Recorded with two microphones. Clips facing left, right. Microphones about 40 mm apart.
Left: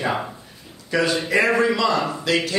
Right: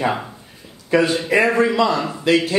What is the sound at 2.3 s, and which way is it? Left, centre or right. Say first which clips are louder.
Speech: right 6 dB; right.